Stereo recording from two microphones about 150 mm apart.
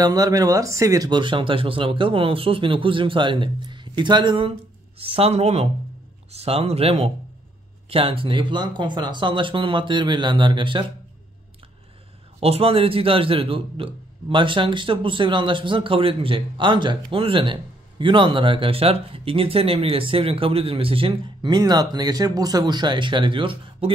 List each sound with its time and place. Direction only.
0.0 s a man's voice: 25° right (ahead or behind)
12.4 s speech: 40° right (ahead or behind)